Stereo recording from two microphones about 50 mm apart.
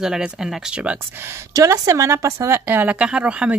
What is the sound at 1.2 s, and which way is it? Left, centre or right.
Speech, right.